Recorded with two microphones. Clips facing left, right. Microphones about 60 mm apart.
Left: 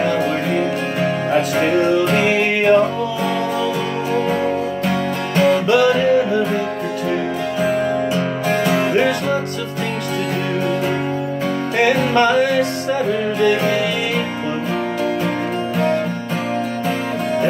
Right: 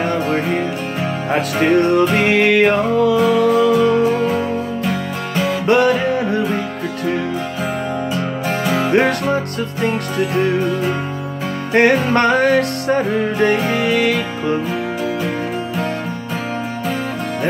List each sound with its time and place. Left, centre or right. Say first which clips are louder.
0.0 s music: even; right
1.3 s music: right 3 dB; right
3.2 s music: right 6 dB; centre
5.7 s music: right 5 dB; right
8.9 s music: right 2 dB; right
11.7 s music: right 3 dB; right
13.9 s music: right 3 dB; right